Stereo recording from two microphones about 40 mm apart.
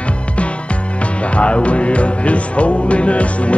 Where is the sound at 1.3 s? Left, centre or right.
Left.